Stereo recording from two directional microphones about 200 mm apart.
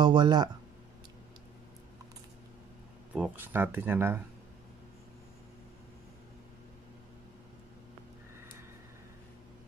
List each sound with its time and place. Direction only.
0.0 s speech: 20° right (ahead or behind)
3.2 s speech: 10° right (ahead or behind)